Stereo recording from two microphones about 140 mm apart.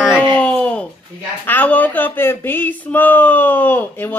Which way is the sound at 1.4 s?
10° left (ahead or behind).